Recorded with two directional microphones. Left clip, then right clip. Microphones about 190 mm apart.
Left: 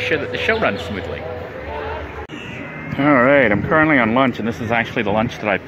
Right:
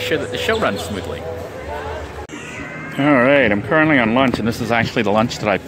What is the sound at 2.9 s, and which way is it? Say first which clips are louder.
Speech: even; 10° right (ahead or behind).